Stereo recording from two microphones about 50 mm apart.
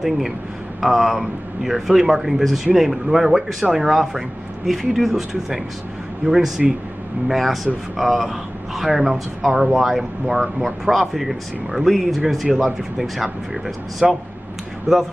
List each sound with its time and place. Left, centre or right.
0.7 s a man's voice: centre